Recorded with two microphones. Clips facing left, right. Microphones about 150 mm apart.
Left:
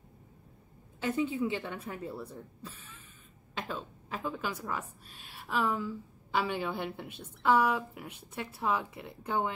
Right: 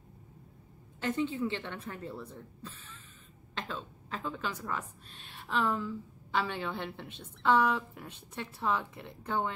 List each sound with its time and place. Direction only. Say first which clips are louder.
1.0 s a woman's voice: left 1 dB; 10° left (ahead or behind)